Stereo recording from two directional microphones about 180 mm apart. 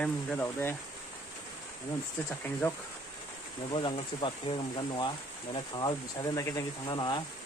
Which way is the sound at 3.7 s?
30° left (ahead or behind).